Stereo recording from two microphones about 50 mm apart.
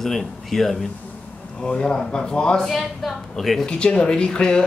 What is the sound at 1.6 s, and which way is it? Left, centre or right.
Speech, centre.